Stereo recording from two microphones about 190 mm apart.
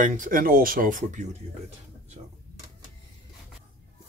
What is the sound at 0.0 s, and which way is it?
Speech, 45° right (ahead or behind).